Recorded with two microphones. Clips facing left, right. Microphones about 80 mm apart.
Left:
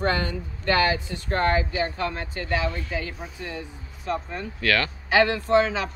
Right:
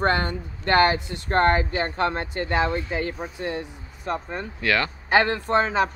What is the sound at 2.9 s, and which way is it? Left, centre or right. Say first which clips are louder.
Speech: right 4 dB; right.